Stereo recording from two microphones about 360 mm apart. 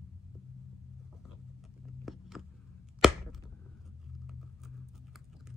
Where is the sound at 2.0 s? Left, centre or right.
Centre.